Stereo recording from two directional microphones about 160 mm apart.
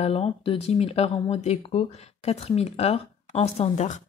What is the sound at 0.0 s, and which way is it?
Speech, 35° left (ahead or behind).